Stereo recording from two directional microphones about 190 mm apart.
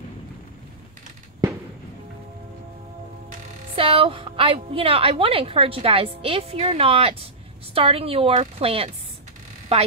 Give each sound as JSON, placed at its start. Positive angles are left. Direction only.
{"t": 3.7, "sound": "a woman's voice", "side_deg": -30}